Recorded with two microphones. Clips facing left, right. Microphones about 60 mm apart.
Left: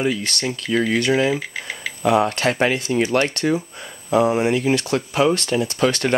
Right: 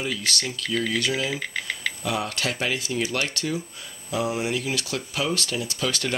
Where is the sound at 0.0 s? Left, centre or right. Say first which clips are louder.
Left 6 dB; left.